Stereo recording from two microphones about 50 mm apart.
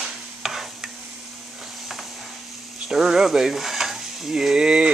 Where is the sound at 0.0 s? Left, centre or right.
Centre.